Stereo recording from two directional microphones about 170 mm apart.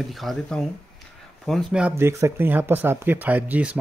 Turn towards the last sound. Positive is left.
turn(degrees=-10)  # may be behind; listen again after turning